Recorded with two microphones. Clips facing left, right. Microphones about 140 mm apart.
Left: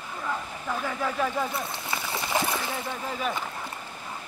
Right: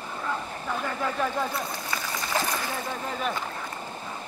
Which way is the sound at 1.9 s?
20° left (ahead or behind).